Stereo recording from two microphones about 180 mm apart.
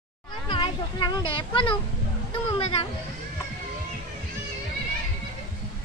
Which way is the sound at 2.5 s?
30° left (ahead or behind).